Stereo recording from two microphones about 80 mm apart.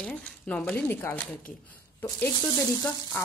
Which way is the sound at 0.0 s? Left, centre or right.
Centre.